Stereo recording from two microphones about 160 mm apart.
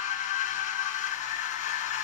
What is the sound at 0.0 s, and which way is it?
Music, 50° left (ahead or behind).